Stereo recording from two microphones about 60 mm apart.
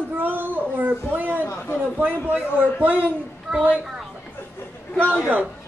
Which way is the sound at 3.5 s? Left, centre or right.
Centre.